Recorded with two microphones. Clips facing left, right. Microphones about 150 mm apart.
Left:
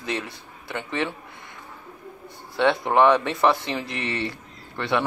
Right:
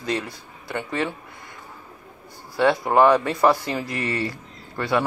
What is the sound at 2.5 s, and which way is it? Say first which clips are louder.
Speech: right 1 dB; 5° right (ahead or behind).